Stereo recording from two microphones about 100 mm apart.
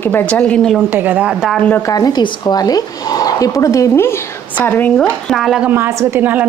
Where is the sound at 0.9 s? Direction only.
20° right (ahead or behind).